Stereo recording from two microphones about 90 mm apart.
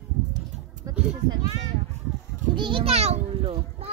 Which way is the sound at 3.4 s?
90° right.